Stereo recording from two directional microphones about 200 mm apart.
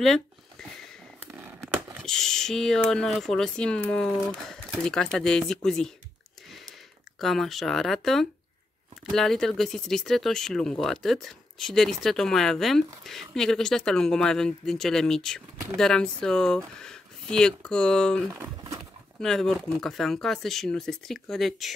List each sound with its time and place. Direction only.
0.0 s a sound: centre (ahead or behind)
1.2 s speech: 10° right (ahead or behind)
7.2 s speech: centre (ahead or behind)